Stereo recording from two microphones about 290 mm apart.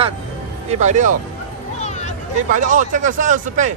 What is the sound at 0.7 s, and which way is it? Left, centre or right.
Speech, right.